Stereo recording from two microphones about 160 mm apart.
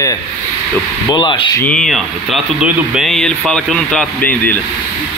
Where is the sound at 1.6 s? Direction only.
5° left (ahead or behind).